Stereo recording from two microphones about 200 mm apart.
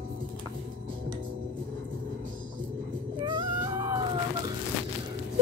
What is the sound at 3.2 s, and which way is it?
Cat, 20° right (ahead or behind).